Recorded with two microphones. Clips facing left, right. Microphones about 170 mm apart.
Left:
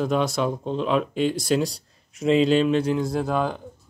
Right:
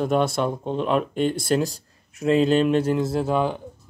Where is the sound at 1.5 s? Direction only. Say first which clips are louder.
Right 1 dB; centre (ahead or behind).